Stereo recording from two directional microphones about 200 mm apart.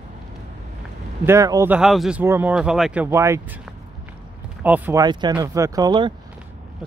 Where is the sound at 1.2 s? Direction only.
15° right (ahead or behind).